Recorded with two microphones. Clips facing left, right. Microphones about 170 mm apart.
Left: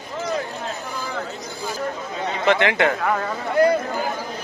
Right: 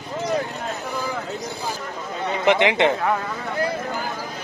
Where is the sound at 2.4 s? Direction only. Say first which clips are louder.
Right 1 dB; 15° right (ahead or behind).